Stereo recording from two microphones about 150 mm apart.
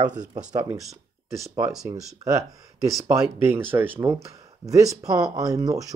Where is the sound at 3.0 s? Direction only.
15° right (ahead or behind).